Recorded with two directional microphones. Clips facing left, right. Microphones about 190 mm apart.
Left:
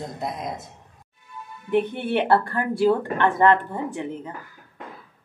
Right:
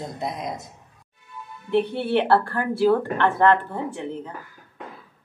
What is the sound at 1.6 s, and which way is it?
Speech, 15° left (ahead or behind).